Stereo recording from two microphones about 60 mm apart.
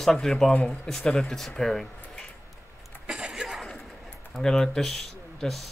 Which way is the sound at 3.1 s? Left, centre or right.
Centre.